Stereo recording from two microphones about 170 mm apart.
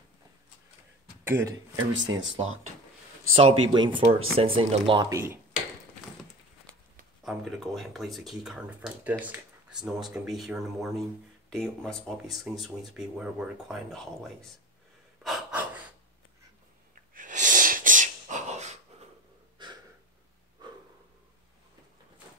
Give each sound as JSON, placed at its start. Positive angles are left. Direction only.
{"t": 1.2, "sound": "speech", "side_deg": -15}
{"t": 1.8, "sound": "speech", "side_deg": -25}
{"t": 5.1, "sound": "speech", "side_deg": -10}
{"t": 7.2, "sound": "speech", "side_deg": 0}
{"t": 9.2, "sound": "a sound", "side_deg": -10}
{"t": 9.8, "sound": "speech", "side_deg": -5}
{"t": 15.2, "sound": "gasp", "side_deg": -5}
{"t": 17.1, "sound": "sneeze", "side_deg": -50}
{"t": 19.6, "sound": "a sound", "side_deg": -25}